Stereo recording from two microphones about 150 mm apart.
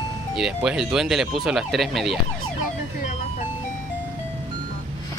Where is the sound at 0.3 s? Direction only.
5° right (ahead or behind).